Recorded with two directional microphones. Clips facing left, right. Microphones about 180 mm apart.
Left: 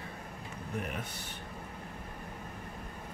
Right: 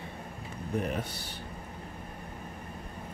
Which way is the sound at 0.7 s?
35° right (ahead or behind).